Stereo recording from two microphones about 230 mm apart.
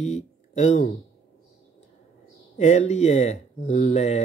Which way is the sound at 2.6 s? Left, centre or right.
Left.